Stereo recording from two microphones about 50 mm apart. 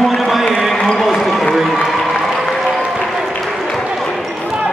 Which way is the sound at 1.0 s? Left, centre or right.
Centre.